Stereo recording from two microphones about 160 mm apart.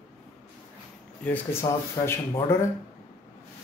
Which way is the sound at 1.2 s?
10° left (ahead or behind).